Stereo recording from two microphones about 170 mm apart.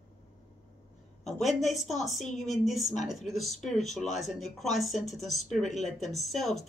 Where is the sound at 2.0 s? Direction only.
45° left (ahead or behind).